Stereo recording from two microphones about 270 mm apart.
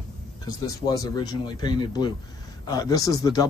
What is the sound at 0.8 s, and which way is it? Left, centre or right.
Speech, centre.